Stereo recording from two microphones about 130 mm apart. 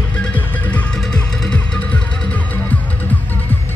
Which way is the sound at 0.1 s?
10° left (ahead or behind).